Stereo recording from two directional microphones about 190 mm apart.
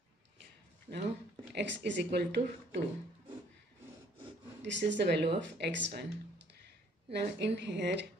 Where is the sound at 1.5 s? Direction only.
70° right (ahead or behind).